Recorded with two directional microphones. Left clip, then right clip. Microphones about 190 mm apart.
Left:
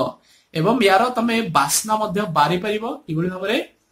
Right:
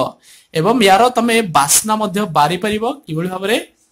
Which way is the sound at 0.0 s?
40° right (ahead or behind).